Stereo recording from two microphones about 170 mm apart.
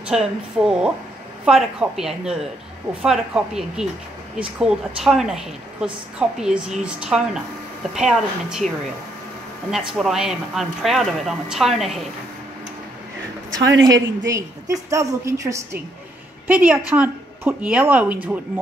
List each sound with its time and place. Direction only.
0.1 s speech: 5° right (ahead or behind)
9.7 s speech: centre (ahead or behind)
13.6 s a woman's voice: 90° right
14.2 s a woman's voice: 20° right (ahead or behind)